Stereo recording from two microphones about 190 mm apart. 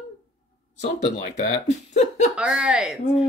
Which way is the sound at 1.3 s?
35° left (ahead or behind).